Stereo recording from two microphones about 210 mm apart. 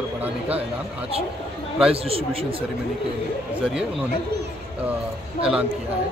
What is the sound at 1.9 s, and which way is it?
Speech, 25° right (ahead or behind).